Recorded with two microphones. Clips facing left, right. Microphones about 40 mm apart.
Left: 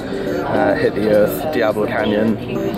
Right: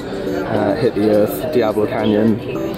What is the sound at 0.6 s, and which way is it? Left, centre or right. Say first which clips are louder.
Speech: left 2 dB; left.